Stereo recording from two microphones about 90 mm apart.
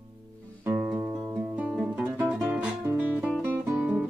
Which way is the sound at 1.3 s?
15° right (ahead or behind).